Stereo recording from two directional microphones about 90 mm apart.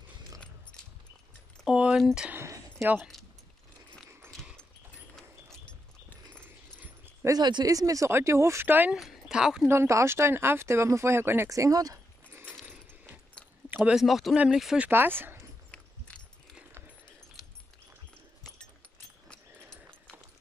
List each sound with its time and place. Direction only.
1.7 s a sound: 10° right (ahead or behind)
2.0 s speech: centre (ahead or behind)
2.3 s a sound: 30° right (ahead or behind)
3.0 s speech: centre (ahead or behind)
5.1 s dog: 5° left (ahead or behind)
7.2 s speech: 50° right (ahead or behind); by 8.9 s 20° right (ahead or behind)
8.9 s speech: 5° right (ahead or behind)
9.7 s speech: 30° right (ahead or behind)
11.4 s speech: 35° right (ahead or behind)
13.7 s a sound: 20° right (ahead or behind)
13.9 s speech: centre (ahead or behind)
14.8 s speech: 25° right (ahead or behind)
16.1 s a sound: 15° left (ahead or behind)